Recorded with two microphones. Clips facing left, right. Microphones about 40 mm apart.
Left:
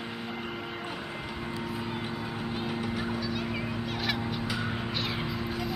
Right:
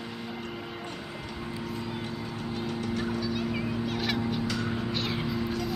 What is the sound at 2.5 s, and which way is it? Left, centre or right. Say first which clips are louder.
Fowl: right 2 dB; centre.